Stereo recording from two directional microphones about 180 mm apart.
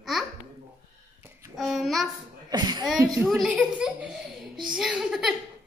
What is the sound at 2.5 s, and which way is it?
Speech, 20° right (ahead or behind).